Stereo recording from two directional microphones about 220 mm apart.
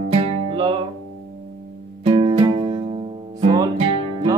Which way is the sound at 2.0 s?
25° right (ahead or behind).